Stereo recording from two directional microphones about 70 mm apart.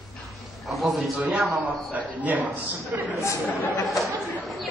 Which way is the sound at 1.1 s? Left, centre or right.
Centre.